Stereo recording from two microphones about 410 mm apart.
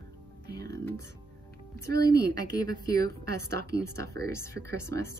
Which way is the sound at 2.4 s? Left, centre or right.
Centre.